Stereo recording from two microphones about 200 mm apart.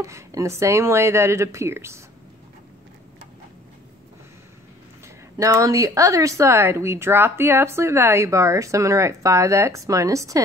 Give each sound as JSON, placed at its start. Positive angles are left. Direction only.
{"t": 0.0, "sound": "speech", "side_deg": -15}
{"t": 5.0, "sound": "speech", "side_deg": -15}